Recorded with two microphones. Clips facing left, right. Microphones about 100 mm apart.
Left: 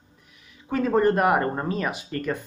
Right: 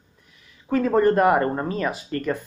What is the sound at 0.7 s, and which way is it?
Speech, 10° left (ahead or behind).